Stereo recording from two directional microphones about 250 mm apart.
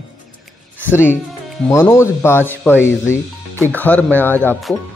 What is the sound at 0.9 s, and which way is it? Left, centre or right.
Speech, centre.